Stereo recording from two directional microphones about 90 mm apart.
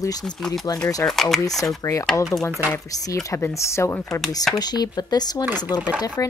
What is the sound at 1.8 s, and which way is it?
Speech, 35° left (ahead or behind).